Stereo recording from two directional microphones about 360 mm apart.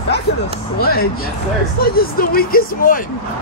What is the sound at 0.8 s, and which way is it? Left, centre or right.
Speech, left.